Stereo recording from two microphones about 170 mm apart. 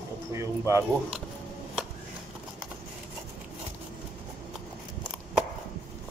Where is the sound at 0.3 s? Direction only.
15° right (ahead or behind).